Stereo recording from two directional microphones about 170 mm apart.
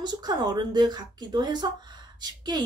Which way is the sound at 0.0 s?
25° right (ahead or behind).